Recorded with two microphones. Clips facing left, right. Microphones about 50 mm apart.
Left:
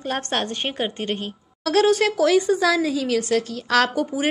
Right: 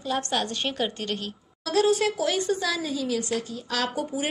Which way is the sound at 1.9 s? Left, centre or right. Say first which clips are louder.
Left 5 dB; left.